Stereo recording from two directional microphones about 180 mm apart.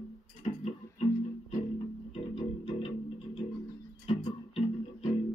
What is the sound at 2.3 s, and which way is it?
Music, 30° left (ahead or behind).